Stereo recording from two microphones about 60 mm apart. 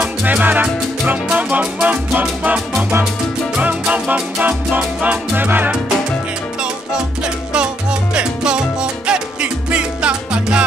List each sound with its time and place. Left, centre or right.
0.0 s music: right
3.9 s music: right
7.5 s music: centre